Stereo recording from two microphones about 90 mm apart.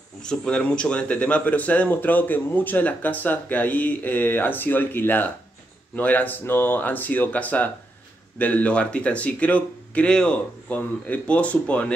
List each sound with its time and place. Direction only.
0.2 s speech: 10° left (ahead or behind)